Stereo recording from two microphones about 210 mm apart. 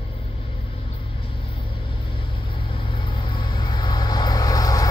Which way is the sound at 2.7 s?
25° left (ahead or behind).